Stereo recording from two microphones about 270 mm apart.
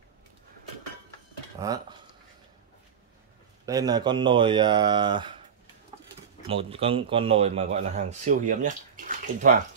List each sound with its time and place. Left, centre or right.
1.6 s speech: centre
3.6 s speech: centre
6.4 s speech: right